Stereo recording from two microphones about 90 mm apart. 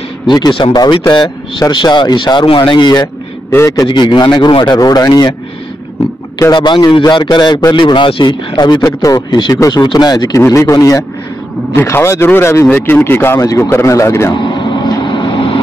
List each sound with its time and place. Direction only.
0.3 s a man's voice: 55° left (ahead or behind)
3.4 s a man's voice: 30° left (ahead or behind); by 4.7 s 60° left (ahead or behind)
4.7 s speech: 45° left (ahead or behind)
6.5 s a man's voice: 55° left (ahead or behind)
8.8 s a man's voice: 40° left (ahead or behind)
9.3 s speech: 55° left (ahead or behind)
10.4 s a man's voice: 35° left (ahead or behind)
11.7 s a man's voice: 30° left (ahead or behind)
14.3 s vehicle: 60° left (ahead or behind); by 15.1 s 45° left (ahead or behind)
15.1 s vehicle: 60° left (ahead or behind)